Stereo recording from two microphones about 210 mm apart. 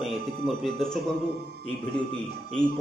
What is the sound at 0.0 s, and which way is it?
Speech, centre (ahead or behind).